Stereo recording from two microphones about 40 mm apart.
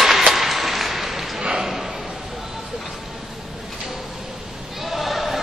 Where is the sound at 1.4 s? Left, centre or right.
Centre.